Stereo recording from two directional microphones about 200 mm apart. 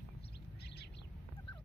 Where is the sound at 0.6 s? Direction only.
55° left (ahead or behind).